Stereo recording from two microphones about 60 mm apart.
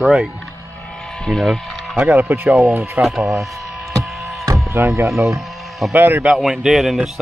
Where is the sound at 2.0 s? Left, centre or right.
Right.